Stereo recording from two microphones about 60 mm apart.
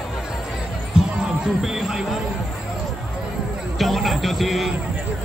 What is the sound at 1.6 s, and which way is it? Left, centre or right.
Speech, centre.